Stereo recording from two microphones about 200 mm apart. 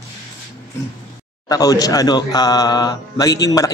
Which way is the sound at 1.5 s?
20° left (ahead or behind).